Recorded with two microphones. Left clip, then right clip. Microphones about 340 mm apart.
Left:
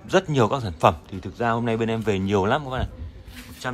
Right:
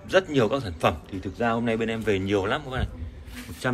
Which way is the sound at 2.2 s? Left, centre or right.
Centre.